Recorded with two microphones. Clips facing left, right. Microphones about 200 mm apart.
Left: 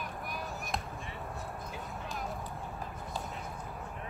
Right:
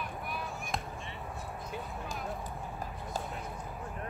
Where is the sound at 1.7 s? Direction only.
Centre (ahead or behind).